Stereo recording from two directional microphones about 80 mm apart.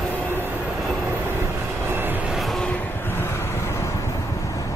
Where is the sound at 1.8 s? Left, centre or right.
Right.